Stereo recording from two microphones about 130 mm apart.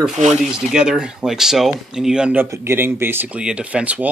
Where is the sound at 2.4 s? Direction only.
20° right (ahead or behind).